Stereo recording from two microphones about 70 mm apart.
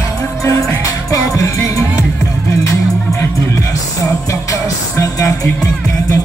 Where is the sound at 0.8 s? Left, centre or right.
Left.